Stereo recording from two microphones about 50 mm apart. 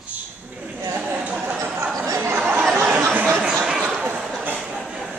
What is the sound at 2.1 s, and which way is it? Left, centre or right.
Chatter, right.